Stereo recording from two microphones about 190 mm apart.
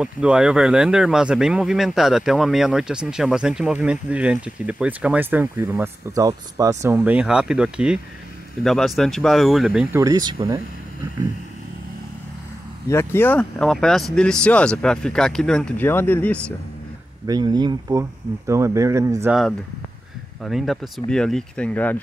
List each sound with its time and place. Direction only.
0.0 s speech: 5° right (ahead or behind)
9.9 s speech: 20° right (ahead or behind)
12.8 s speech: 15° left (ahead or behind)
17.3 s speech: 20° right (ahead or behind)
20.4 s speech: centre (ahead or behind)